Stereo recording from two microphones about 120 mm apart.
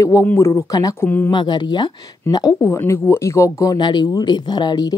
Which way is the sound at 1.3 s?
40° left (ahead or behind).